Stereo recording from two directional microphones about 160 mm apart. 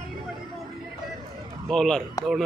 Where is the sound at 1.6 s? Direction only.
5° left (ahead or behind).